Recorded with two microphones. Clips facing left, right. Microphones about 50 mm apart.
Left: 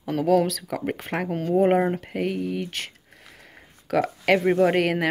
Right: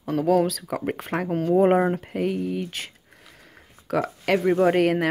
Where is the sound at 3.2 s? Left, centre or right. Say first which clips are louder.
Left 2 dB; centre.